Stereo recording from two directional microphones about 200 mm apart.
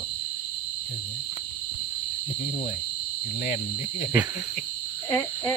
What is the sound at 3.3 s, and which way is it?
Speech, 45° left (ahead or behind).